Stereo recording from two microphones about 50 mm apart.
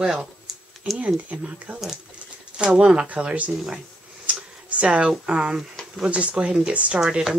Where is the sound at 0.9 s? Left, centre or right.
Right.